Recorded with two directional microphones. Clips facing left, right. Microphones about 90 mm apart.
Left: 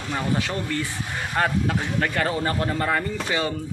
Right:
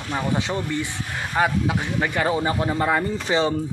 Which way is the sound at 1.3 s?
5° right (ahead or behind).